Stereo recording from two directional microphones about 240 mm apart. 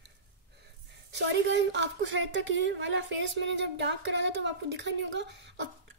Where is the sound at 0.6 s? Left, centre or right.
Right.